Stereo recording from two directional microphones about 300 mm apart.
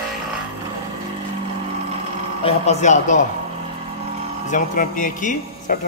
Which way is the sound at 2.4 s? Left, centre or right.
Left.